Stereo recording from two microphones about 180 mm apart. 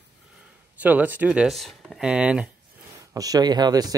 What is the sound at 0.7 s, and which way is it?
Speech, 10° right (ahead or behind).